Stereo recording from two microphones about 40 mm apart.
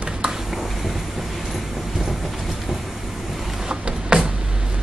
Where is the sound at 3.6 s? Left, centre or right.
Right.